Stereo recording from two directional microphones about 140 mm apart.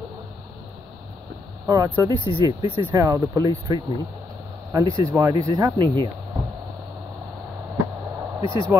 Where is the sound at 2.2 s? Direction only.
40° left (ahead or behind).